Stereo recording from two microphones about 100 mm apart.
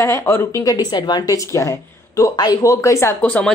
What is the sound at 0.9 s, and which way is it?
A woman's voice, 45° left (ahead or behind).